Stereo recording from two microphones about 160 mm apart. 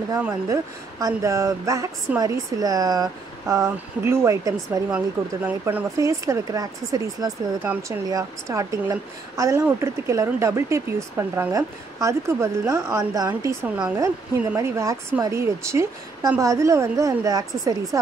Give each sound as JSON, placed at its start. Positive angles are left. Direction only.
{"t": 0.5, "sound": "speech", "side_deg": -20}